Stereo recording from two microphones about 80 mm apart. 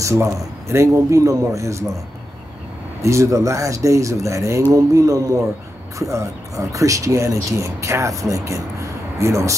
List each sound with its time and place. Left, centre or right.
0.0 s speech: right
3.0 s speech: right
4.7 s speech: right